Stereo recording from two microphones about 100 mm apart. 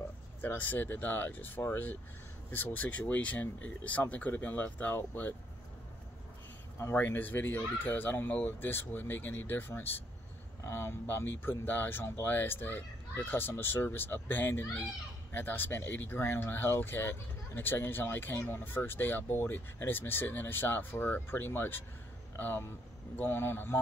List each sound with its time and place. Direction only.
0.4 s speech: 20° left (ahead or behind)
6.8 s speech: 20° left (ahead or behind)